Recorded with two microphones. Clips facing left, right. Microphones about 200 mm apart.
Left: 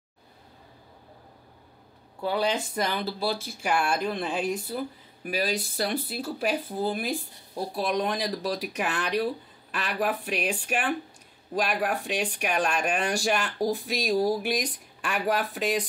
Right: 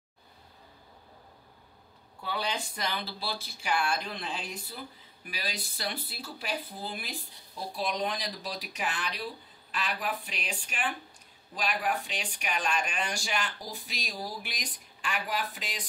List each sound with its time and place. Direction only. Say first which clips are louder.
2.2 s speech: left 8 dB; 45° left (ahead or behind)